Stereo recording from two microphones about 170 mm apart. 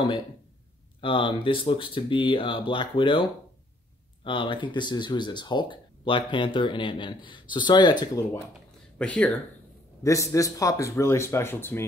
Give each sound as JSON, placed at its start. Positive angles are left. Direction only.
{"t": 1.0, "sound": "speech", "side_deg": 30}
{"t": 8.9, "sound": "speech", "side_deg": 5}
{"t": 10.0, "sound": "speech", "side_deg": 20}